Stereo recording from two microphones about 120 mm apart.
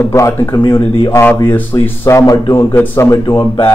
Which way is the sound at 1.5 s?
15° left (ahead or behind).